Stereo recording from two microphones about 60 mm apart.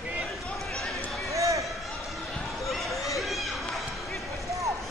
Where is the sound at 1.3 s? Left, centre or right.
Right.